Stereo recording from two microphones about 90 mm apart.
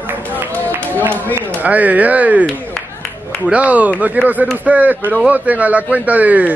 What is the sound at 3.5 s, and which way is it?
Speech, 15° right (ahead or behind).